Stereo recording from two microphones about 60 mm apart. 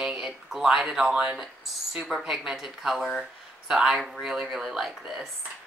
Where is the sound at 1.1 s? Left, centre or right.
Right.